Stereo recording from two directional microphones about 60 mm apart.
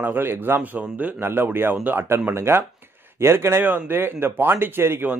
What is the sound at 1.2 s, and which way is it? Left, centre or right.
Speech, right.